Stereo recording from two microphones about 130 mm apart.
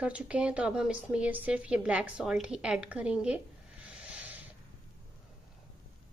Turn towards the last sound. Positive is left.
turn(degrees=-10)  # may be behind; listen again after turning